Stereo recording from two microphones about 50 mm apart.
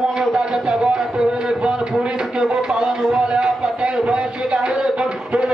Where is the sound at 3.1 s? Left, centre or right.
Centre.